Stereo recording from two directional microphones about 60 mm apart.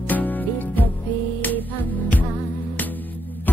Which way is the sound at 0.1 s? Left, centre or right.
Left.